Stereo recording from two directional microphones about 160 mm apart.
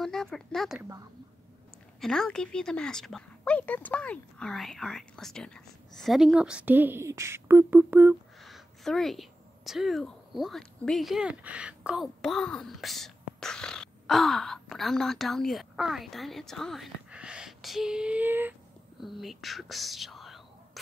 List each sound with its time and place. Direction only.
0.0 s speech: 5° left (ahead or behind)
0.7 s a woman's voice: 20° right (ahead or behind)
2.0 s speech: 5° left (ahead or behind)
8.4 s a woman's voice: centre (ahead or behind)
12.2 s speech: 5° left (ahead or behind); by 18.5 s 10° right (ahead or behind)
18.9 s speech: centre (ahead or behind)